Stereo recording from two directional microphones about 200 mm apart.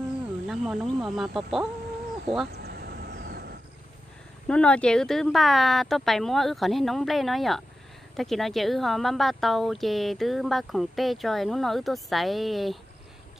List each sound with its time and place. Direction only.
0.5 s speech: centre (ahead or behind)
2.5 s a sound: 50° right (ahead or behind)
4.5 s speech: 5° left (ahead or behind)